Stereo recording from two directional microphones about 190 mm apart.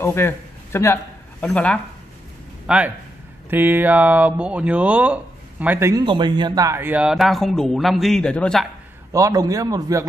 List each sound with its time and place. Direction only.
0.0 s speech: 10° left (ahead or behind)
2.6 s speech: 5° right (ahead or behind)
6.0 s speech: 25° right (ahead or behind); by 8.6 s 5° left (ahead or behind)
9.1 s speech: 15° right (ahead or behind)